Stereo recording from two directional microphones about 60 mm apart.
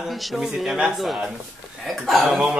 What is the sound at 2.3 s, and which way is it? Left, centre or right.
Speech, centre.